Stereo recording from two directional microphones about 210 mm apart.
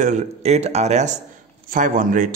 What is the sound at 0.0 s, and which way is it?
A man's voice, 35° right (ahead or behind).